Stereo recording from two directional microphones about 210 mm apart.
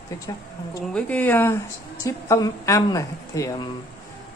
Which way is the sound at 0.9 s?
5° left (ahead or behind).